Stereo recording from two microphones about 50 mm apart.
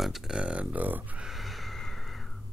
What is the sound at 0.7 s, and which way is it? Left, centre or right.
Speech, right.